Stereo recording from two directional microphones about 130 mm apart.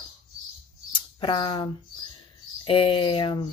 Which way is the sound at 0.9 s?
35° left (ahead or behind).